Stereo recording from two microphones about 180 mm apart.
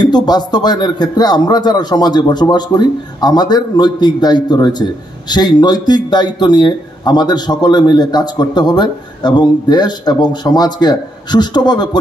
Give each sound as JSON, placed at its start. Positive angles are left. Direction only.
{"t": 0.0, "sound": "speech", "side_deg": 25}